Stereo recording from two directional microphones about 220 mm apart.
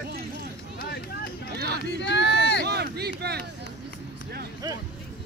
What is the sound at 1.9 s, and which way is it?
Speech, 50° left (ahead or behind).